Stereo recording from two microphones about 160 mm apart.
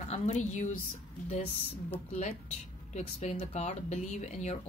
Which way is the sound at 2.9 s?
45° left (ahead or behind).